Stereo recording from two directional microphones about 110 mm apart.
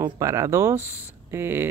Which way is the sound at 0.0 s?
30° right (ahead or behind).